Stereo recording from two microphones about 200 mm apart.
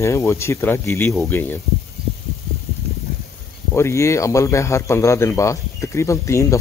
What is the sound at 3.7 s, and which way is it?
Speech, 15° left (ahead or behind).